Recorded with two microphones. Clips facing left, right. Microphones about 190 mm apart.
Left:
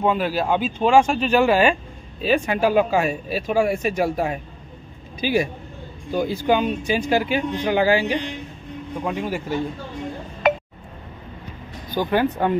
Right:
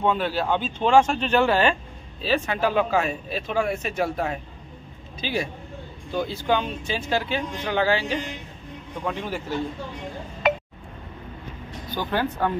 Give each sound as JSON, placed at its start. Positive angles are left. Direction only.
{"t": 0.0, "sound": "speech", "side_deg": 10}
{"t": 10.4, "sound": "a sound", "side_deg": 50}
{"t": 11.9, "sound": "speech", "side_deg": 15}